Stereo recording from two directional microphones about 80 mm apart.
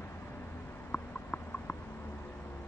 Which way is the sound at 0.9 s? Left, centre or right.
Left.